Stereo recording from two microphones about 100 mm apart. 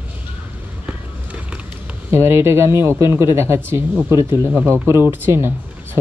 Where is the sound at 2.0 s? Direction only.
25° right (ahead or behind).